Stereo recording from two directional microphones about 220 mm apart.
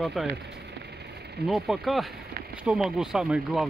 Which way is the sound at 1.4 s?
Centre (ahead or behind).